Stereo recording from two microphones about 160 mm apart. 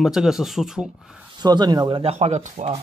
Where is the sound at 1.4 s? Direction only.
25° right (ahead or behind).